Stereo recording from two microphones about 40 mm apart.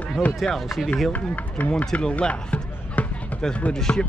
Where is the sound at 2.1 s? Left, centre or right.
Left.